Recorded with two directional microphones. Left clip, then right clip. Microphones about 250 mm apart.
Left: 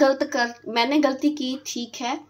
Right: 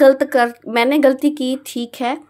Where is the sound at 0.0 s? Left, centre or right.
Right.